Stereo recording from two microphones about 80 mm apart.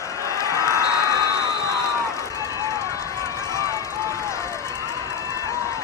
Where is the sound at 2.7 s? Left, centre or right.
Left.